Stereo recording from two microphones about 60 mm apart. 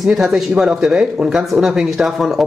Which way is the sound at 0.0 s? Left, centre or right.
Centre.